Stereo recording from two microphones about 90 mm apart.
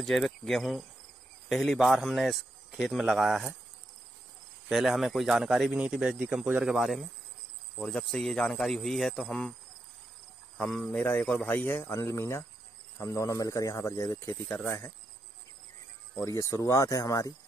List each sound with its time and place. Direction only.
0.0 s a man's voice: centre (ahead or behind)
4.6 s a man's voice: 5° right (ahead or behind)
6.6 s a man's voice: 5° right (ahead or behind)
9.1 s speech: 15° left (ahead or behind)
10.9 s speech: 20° left (ahead or behind); by 14.3 s 35° left (ahead or behind)
16.2 s speech: 35° left (ahead or behind)